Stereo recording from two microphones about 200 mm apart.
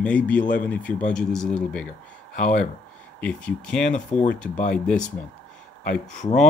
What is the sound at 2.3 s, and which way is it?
Speech, 40° left (ahead or behind).